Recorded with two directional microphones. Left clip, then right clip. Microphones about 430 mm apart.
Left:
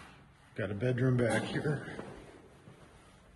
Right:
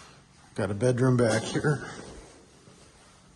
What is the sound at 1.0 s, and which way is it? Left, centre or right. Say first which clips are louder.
Speech: right 4 dB; right.